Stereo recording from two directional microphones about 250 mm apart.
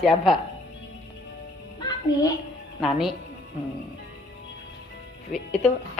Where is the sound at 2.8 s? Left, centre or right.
Centre.